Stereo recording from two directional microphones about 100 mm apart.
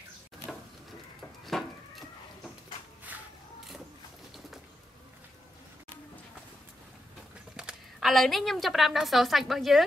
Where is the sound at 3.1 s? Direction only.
15° right (ahead or behind).